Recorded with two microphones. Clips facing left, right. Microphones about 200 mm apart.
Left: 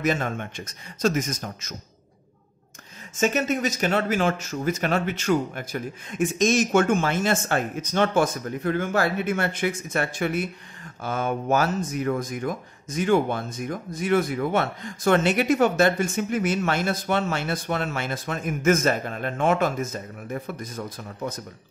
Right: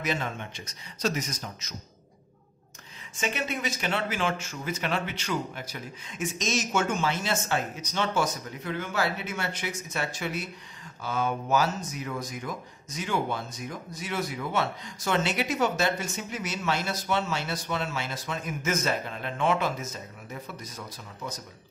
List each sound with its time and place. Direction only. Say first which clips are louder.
0.0 s speech: left 6 dB; 50° left (ahead or behind)
3.2 s speech: left 8 dB; 45° left (ahead or behind)